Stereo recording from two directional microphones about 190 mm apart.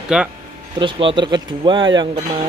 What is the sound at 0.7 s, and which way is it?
Speech, 25° right (ahead or behind).